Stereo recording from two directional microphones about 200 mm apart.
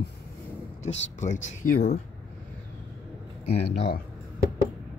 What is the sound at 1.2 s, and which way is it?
Speech, 40° left (ahead or behind).